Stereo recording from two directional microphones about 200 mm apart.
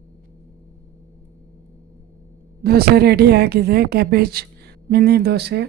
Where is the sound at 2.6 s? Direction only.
50° right (ahead or behind).